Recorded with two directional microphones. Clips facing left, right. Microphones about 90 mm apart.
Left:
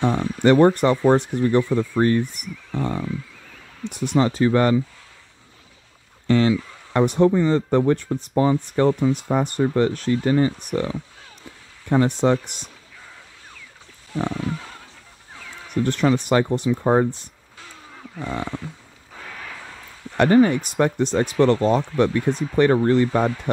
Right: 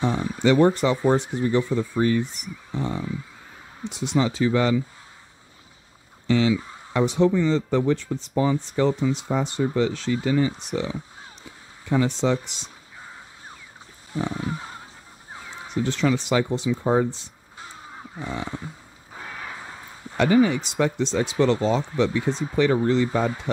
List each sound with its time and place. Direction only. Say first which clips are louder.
0.0 s speech: left 3 dB; 55° left (ahead or behind)
6.2 s speech: left 2 dB; 50° left (ahead or behind)
12.6 s a sound: right 1 dB; 25° right (ahead or behind)
15.3 s crow: right 2 dB; 25° right (ahead or behind)
15.7 s speech: left 3 dB; 55° left (ahead or behind)
17.6 s vehicle: right 2 dB; 25° right (ahead or behind)
18.2 s speech: left 3 dB; 50° left (ahead or behind)
19.2 s a sound: right 1 dB; 25° right (ahead or behind)
20.2 s speech: left 3 dB; 50° left (ahead or behind)